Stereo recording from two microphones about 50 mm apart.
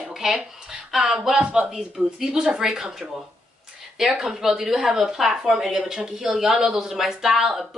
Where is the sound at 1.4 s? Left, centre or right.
Centre.